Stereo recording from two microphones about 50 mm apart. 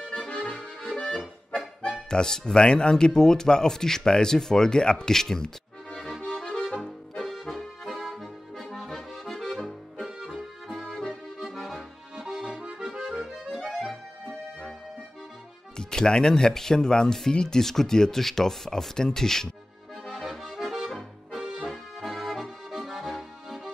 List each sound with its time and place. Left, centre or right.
0.0 s accordion: centre
1.8 s speech: centre
6.2 s music: centre
7.2 s accordion: centre
13.2 s accordion: centre
15.8 s speech: centre
20.2 s accordion: centre